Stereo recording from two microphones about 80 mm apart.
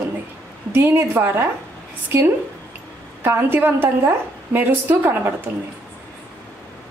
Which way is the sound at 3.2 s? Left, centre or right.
Right.